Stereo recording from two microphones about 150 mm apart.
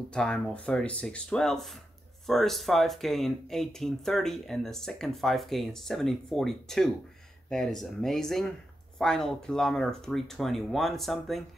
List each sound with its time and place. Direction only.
0.1 s speech: 5° left (ahead or behind)